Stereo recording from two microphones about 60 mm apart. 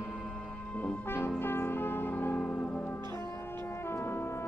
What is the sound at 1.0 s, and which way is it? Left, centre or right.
Music, left.